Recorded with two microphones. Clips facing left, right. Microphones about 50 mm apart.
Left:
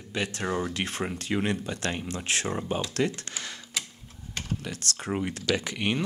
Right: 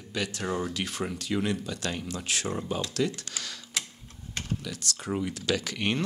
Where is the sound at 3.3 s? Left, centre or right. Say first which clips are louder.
Left 1 dB; left.